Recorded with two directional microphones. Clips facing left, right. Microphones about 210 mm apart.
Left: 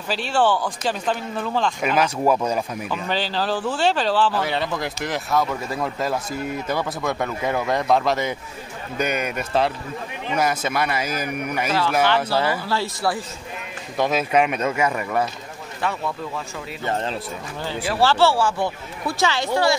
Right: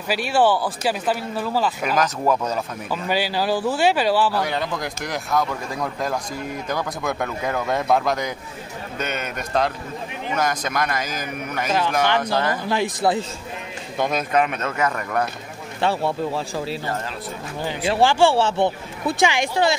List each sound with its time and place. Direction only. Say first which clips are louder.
0.1 s speech: right 2 dB; 10° right (ahead or behind)
2.0 s a man's voice: left 1 dB; 10° left (ahead or behind)
2.9 s speech: right 6 dB; 10° right (ahead or behind)
4.4 s a man's voice: even; centre (ahead or behind)
11.7 s speech: even; 15° right (ahead or behind)
12.2 s a man's voice: left 1 dB; 10° left (ahead or behind)
12.6 s speech: right 3 dB; 15° right (ahead or behind)
13.9 s a man's voice: left 1 dB; 5° left (ahead or behind)
15.8 s speech: right 5 dB; 30° right (ahead or behind)
18.0 s speech: right 1 dB; 15° right (ahead or behind)